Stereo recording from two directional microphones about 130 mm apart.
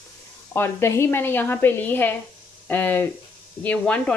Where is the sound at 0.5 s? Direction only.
20° left (ahead or behind).